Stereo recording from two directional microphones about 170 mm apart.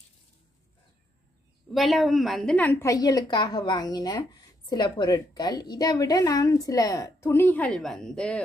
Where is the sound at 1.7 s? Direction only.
Centre (ahead or behind).